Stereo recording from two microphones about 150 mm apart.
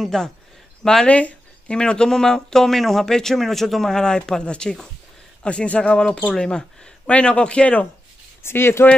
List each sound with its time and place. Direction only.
0.0 s speech: 5° left (ahead or behind)